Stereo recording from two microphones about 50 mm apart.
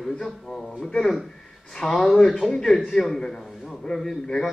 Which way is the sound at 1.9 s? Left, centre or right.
Centre.